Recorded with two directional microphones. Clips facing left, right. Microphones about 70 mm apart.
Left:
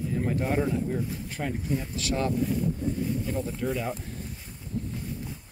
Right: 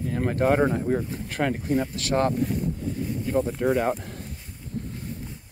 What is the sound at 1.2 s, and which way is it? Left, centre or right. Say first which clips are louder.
Speech: right 5 dB; right.